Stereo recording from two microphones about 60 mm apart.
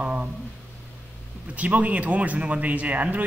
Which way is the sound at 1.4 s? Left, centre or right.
Right.